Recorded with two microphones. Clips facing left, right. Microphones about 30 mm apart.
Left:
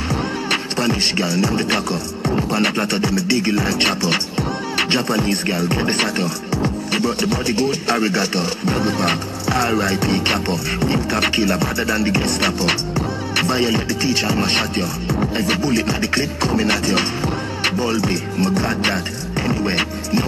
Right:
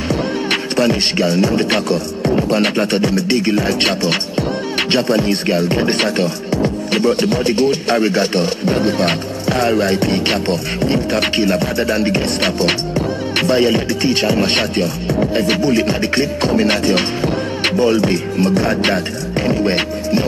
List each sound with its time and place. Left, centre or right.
2.7 s music: right
3.4 s speech: right
5.9 s music: right
7.6 s music: right
9.8 s music: right
15.3 s music: right